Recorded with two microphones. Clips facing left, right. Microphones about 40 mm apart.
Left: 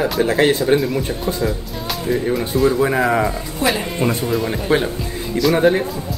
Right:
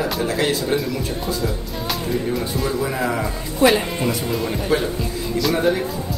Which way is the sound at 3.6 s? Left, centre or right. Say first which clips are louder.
Right 4 dB; centre.